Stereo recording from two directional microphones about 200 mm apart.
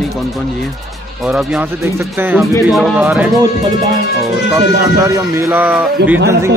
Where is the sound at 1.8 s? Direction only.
10° right (ahead or behind).